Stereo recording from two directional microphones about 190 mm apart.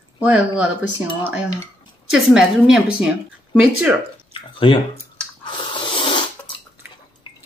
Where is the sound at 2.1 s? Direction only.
5° right (ahead or behind).